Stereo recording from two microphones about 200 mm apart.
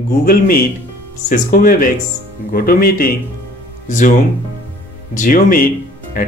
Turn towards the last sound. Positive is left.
turn(degrees=40)  # may be behind; listen again after turning